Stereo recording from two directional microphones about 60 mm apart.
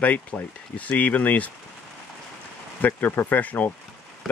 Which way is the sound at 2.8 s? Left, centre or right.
Left.